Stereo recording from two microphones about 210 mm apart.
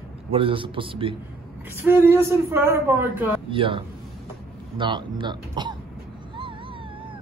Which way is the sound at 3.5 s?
25° right (ahead or behind).